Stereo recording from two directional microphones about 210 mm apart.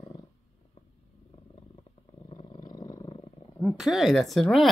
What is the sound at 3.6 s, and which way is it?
Speech, centre (ahead or behind).